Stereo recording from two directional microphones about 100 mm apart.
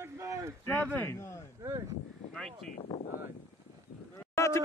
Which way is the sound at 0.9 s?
25° left (ahead or behind).